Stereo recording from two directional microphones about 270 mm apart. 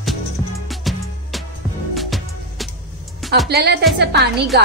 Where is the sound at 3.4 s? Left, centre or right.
Right.